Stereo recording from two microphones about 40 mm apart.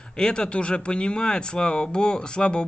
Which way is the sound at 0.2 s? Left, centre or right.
Left.